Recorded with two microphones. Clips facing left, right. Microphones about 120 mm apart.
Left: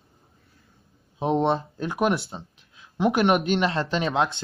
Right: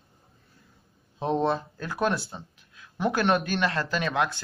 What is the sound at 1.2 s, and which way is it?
Speech, 20° left (ahead or behind).